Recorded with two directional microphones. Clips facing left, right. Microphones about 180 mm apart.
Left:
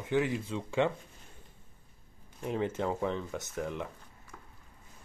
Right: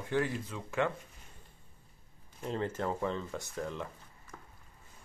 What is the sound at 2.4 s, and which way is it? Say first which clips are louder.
Speech: left 2 dB; 15° left (ahead or behind).